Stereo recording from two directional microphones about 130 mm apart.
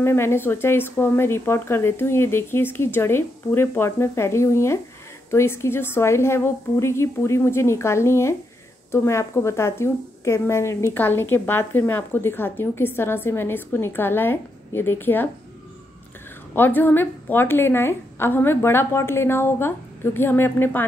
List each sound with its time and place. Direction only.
0.0 s a woman's voice: 20° left (ahead or behind)
16.5 s a woman's voice: 15° left (ahead or behind)